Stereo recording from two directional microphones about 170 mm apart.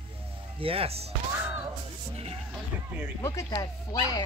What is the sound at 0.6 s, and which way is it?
Speech, 35° right (ahead or behind).